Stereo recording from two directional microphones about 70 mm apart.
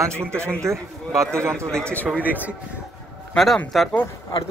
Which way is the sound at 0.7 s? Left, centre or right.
Right.